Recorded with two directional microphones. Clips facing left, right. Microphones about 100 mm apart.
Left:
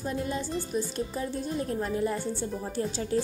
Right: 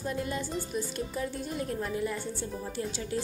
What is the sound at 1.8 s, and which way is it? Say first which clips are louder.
Speech: left 4 dB; 35° left (ahead or behind).